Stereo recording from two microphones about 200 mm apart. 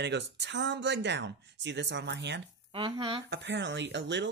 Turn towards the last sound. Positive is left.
turn(degrees=-60)  # may be behind; listen again after turning